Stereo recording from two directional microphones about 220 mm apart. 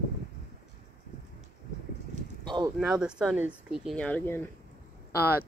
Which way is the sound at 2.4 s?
20° right (ahead or behind).